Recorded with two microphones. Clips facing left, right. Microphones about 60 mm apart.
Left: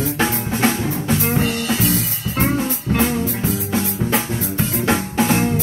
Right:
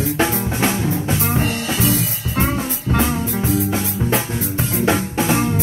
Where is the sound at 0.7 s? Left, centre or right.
Right.